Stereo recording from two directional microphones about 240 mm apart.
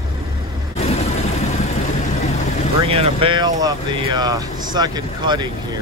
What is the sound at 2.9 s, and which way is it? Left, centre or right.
Speech, right.